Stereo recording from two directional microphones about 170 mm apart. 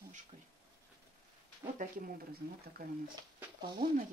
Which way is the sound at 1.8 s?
55° right (ahead or behind).